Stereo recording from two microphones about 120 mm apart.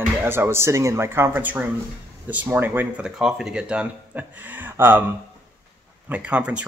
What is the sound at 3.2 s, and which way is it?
Speech, 5° right (ahead or behind).